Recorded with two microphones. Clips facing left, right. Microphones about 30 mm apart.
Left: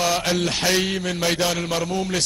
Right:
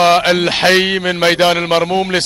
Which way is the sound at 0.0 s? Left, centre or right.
Right.